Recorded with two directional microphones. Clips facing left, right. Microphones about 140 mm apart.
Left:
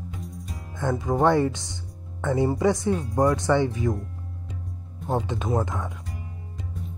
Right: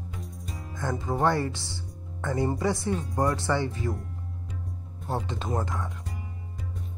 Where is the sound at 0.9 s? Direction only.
5° left (ahead or behind).